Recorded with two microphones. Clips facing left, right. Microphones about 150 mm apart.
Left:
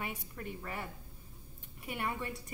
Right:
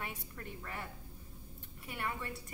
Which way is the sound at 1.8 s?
15° left (ahead or behind).